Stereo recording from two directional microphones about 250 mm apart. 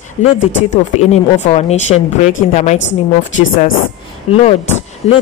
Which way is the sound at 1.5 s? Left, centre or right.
Left.